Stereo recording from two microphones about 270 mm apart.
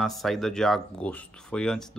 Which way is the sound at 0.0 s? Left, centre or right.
Centre.